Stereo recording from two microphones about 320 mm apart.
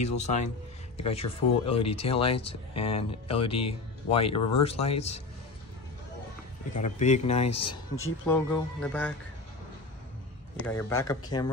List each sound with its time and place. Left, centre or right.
0.0 s a man's voice: left
6.7 s a man's voice: left
8.3 s speech: centre
10.6 s speech: centre